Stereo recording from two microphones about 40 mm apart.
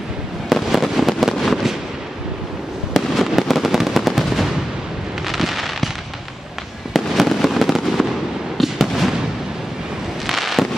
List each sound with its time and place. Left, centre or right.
0.6 s fireworks: centre
2.9 s fireworks: centre
6.9 s fireworks: centre
10.2 s fireworks: centre